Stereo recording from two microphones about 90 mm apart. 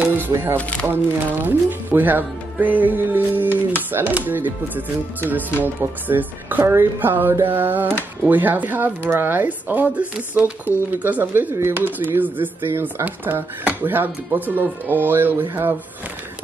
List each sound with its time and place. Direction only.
0.0 s music: 25° right (ahead or behind)
0.6 s speech: 15° left (ahead or behind)
1.4 s speech: 20° right (ahead or behind)